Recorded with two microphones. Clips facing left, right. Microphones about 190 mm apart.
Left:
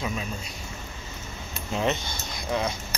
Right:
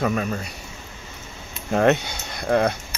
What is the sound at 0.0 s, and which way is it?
Speech, 60° right (ahead or behind).